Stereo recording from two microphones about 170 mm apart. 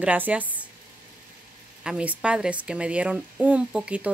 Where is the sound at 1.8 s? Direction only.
5° right (ahead or behind).